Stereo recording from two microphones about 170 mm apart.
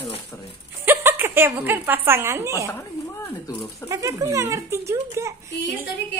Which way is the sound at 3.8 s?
15° right (ahead or behind).